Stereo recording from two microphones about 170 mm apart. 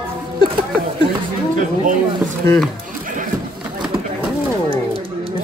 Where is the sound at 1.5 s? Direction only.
50° right (ahead or behind).